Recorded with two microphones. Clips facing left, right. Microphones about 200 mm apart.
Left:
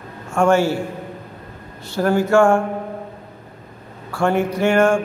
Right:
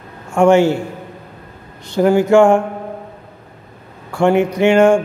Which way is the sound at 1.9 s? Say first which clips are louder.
Right 5 dB; 15° right (ahead or behind).